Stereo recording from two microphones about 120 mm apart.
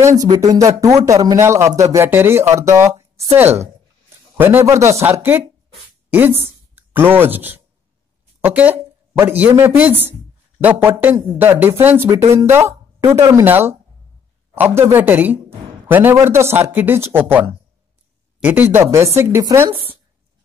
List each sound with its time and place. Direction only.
0.2 s a man's voice: 30° right (ahead or behind)